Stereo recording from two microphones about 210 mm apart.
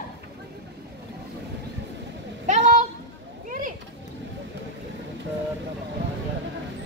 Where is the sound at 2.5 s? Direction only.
35° right (ahead or behind).